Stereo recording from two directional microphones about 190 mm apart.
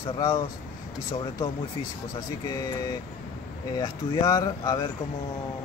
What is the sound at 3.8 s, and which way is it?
Speech, 20° left (ahead or behind).